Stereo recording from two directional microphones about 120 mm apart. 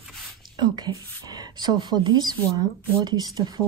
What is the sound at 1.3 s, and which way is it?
Speech, 35° right (ahead or behind).